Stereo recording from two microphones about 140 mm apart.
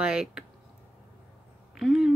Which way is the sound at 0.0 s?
5° right (ahead or behind).